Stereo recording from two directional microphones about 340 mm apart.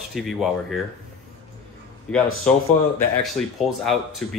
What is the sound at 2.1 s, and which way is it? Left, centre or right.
Speech, centre.